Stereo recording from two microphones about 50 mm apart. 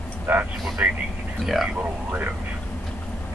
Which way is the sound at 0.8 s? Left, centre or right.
Right.